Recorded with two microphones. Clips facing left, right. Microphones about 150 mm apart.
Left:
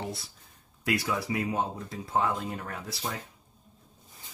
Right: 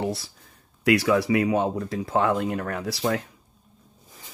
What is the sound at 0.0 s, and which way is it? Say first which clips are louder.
Speech: right 9 dB; 90° right.